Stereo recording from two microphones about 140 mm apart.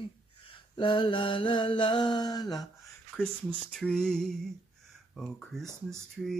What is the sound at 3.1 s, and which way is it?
Speech, 5° left (ahead or behind).